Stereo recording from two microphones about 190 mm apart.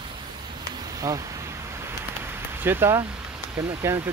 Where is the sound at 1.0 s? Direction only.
20° right (ahead or behind).